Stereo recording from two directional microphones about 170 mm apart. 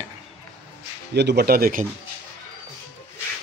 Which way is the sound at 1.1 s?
80° right.